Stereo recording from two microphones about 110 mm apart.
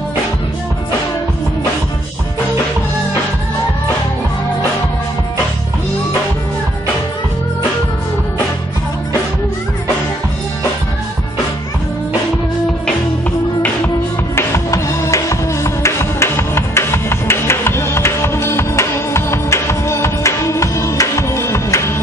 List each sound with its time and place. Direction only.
14.3 s music: 25° left (ahead or behind)